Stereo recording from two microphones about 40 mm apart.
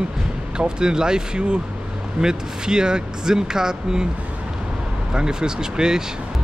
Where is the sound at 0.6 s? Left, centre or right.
Right.